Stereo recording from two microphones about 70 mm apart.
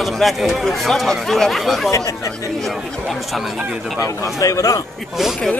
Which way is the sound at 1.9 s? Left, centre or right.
Left.